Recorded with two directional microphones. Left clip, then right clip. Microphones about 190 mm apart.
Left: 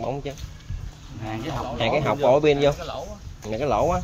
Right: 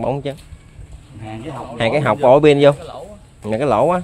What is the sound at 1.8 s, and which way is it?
Speech, 60° right (ahead or behind).